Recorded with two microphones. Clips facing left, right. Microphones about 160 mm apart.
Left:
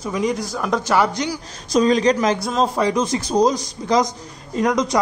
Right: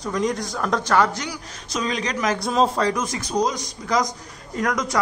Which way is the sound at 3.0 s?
30° left (ahead or behind).